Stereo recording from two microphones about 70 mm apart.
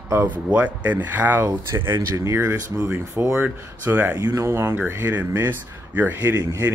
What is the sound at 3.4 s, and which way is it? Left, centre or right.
Speech, right.